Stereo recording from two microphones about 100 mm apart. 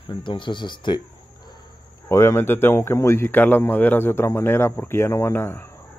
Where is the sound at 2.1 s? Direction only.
30° left (ahead or behind).